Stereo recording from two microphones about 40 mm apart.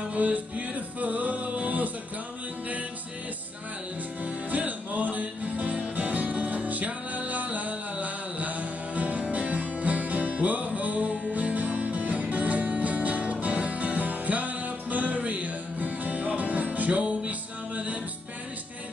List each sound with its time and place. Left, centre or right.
0.1 s music: right
4.2 s music: right